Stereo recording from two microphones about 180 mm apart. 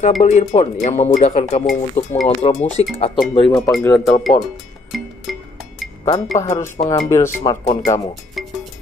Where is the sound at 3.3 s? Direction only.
25° left (ahead or behind).